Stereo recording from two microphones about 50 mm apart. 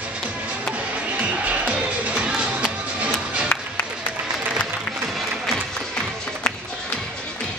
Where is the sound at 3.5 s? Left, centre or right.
Left.